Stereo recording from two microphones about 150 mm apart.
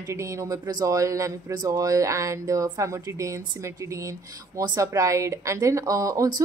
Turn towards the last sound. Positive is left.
turn(degrees=-25)  # may be behind; listen again after turning